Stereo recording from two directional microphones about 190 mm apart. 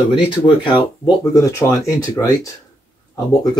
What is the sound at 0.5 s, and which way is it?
Speech, 25° left (ahead or behind).